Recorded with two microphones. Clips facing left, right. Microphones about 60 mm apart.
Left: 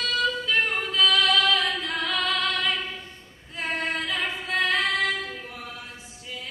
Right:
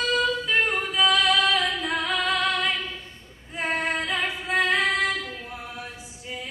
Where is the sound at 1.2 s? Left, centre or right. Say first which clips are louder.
Even; right.